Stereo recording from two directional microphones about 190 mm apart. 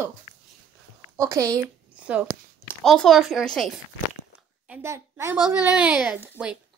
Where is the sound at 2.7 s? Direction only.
Centre (ahead or behind).